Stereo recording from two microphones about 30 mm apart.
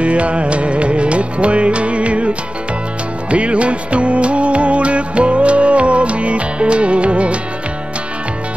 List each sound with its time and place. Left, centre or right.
0.0 s music: right